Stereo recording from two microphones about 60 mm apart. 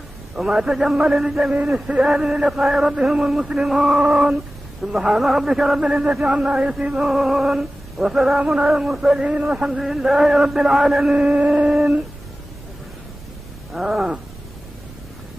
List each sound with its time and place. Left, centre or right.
0.4 s a sound: centre
2.0 s a man's voice: centre
9.2 s a man's voice: right
9.5 s a man's voice: centre
11.1 s a sound: centre
13.7 s a man's voice: centre